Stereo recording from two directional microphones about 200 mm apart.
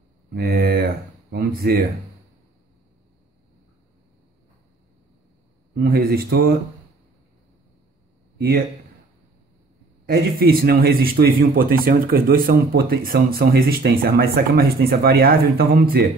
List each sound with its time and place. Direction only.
0.3 s speech: 50° right (ahead or behind)
5.8 s speech: 50° right (ahead or behind)
8.4 s a man's voice: 50° right (ahead or behind)
10.0 s speech: 50° right (ahead or behind)